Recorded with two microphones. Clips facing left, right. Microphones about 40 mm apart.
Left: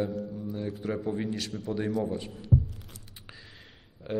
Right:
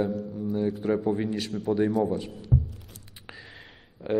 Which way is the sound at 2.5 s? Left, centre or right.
Right.